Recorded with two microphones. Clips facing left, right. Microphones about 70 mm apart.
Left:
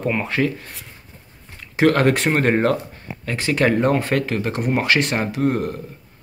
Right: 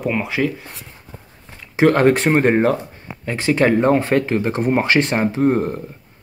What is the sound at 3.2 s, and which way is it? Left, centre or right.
Speech, right.